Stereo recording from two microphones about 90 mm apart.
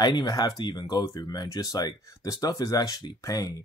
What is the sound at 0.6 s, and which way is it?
Speech, 50° left (ahead or behind).